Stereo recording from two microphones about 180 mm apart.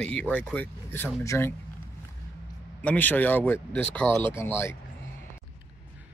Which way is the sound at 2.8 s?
10° left (ahead or behind).